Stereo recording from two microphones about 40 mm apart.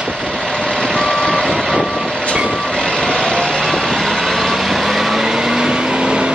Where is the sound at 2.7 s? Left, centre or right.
Centre.